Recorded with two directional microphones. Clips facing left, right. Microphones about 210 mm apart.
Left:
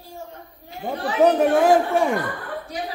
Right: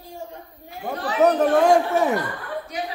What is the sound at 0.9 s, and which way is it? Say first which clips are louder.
A man's voice: left 1 dB; 10° left (ahead or behind).